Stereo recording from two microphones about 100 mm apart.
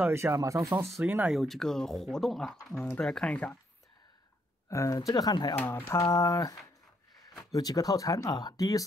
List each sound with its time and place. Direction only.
0.1 s speech: 30° right (ahead or behind)
1.0 s speech: 15° right (ahead or behind)
1.3 s speech: centre (ahead or behind)
4.6 s speech: 30° left (ahead or behind)
5.1 s speech: 45° left (ahead or behind)
5.6 s speech: 20° left (ahead or behind)
7.5 s speech: 35° left (ahead or behind)